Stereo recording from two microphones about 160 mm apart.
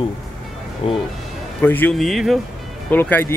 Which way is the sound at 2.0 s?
Centre (ahead or behind).